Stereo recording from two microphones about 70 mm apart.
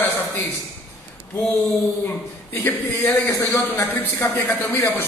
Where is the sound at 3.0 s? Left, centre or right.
Left.